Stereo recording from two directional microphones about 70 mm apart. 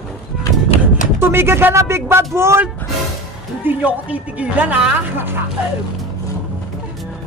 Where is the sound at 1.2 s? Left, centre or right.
Right.